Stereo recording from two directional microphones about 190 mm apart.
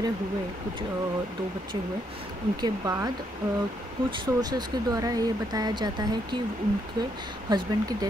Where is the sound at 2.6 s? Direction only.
20° right (ahead or behind).